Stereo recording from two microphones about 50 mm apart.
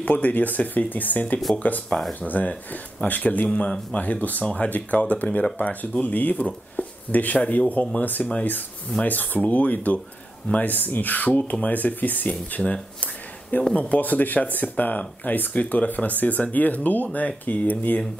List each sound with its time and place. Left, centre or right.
0.0 s speech: left
13.0 s a sound: left
13.7 s speech: left